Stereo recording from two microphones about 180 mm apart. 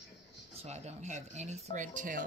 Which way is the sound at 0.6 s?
35° right (ahead or behind).